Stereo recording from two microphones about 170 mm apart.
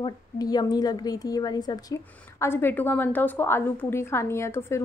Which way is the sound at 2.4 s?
15° left (ahead or behind).